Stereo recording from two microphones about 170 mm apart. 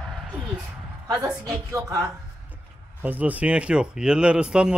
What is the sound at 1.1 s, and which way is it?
Speech, 20° right (ahead or behind).